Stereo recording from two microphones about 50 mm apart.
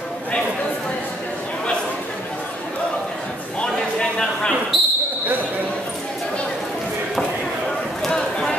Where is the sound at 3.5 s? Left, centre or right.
Centre.